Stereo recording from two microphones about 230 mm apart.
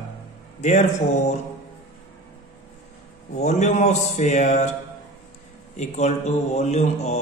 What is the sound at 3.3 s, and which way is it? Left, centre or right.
Speech, left.